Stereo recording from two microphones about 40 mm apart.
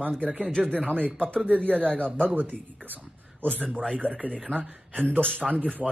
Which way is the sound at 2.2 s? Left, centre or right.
Right.